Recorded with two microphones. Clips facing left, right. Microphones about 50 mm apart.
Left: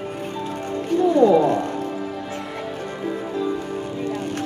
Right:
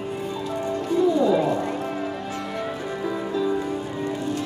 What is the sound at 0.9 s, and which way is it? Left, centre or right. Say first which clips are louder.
Music: left 4 dB; left.